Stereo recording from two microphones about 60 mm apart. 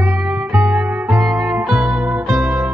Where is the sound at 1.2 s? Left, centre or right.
Centre.